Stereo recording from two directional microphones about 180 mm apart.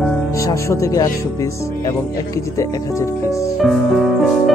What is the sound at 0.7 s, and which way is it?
Speech, 20° left (ahead or behind).